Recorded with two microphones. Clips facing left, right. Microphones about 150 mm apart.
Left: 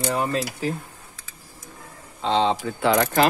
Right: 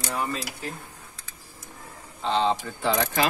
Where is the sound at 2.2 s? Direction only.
90° left.